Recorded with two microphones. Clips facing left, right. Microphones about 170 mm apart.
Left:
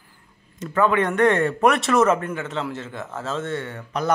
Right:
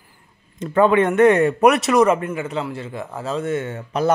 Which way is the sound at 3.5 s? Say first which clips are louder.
Right 5 dB; 20° right (ahead or behind).